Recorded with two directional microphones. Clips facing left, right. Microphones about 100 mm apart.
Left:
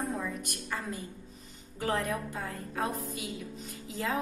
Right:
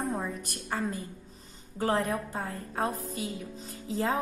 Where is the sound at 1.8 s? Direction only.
35° right (ahead or behind).